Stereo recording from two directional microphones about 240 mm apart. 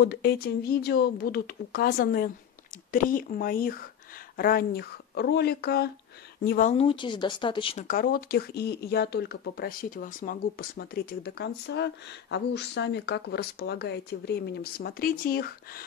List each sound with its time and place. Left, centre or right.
0.0 s speech: left
7.9 s speech: left